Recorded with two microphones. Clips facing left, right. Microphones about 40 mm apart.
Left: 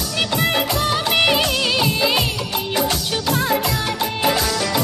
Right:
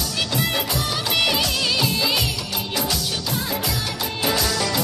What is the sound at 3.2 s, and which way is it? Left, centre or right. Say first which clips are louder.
Music: left 7 dB; left.